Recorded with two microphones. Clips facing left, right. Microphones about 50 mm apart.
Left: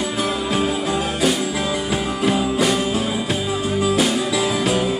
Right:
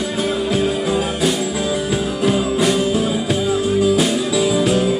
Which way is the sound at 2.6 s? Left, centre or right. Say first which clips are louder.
Right 3 dB; centre.